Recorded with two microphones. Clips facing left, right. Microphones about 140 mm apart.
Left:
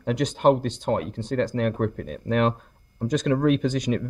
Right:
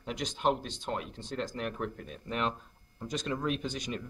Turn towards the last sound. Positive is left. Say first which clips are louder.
# left 12 dB
turn(degrees=80)